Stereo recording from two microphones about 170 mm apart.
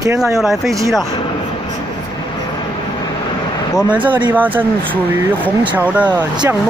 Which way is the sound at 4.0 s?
25° right (ahead or behind).